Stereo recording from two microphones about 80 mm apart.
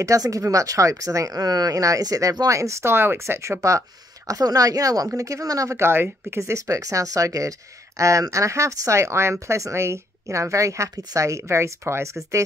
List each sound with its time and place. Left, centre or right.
0.0 s speech: right
4.3 s speech: right
5.8 s speech: right